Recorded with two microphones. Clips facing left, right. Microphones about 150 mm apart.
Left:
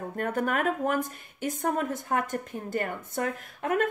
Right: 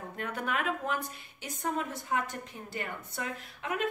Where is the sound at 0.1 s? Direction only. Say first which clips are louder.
Left 6 dB; 45° left (ahead or behind).